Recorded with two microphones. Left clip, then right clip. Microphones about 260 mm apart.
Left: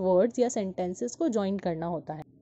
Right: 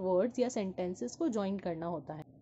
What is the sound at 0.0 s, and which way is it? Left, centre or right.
A woman's voice, left.